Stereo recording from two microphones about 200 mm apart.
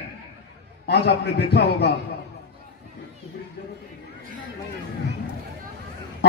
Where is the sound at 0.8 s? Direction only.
55° left (ahead or behind).